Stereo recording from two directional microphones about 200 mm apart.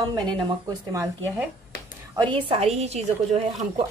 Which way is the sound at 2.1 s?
25° right (ahead or behind).